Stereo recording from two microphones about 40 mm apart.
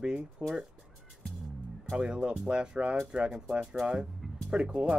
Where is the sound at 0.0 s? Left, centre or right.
Right.